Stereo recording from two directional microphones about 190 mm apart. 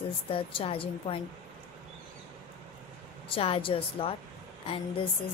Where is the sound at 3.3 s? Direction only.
30° left (ahead or behind).